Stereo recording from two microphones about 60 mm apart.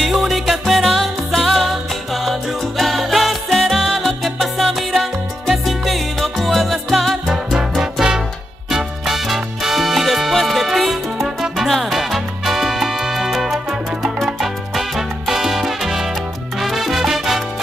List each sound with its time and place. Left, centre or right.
0.0 s music: centre